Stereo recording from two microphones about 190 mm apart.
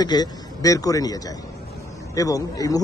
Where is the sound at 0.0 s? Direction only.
20° left (ahead or behind).